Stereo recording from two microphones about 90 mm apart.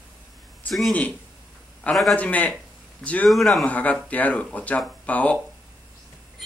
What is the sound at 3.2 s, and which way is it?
Speech, centre (ahead or behind).